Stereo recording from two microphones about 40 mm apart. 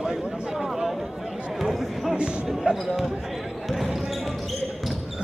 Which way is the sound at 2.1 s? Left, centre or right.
Right.